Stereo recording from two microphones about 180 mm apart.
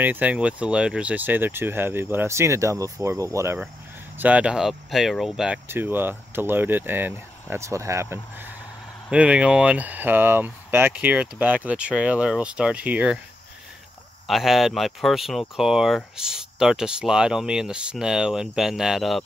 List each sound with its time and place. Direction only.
0.0 s speech: 10° right (ahead or behind)
14.2 s speech: centre (ahead or behind)